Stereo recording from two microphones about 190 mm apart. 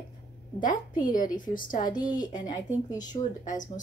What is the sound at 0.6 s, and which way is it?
A woman's voice, 45° left (ahead or behind).